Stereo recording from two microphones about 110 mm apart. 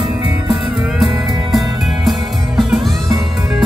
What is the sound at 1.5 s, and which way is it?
Music, centre (ahead or behind).